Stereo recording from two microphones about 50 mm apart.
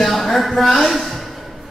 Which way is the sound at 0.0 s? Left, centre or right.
Centre.